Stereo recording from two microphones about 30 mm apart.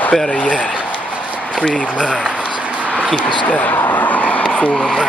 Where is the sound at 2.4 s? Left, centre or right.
Right.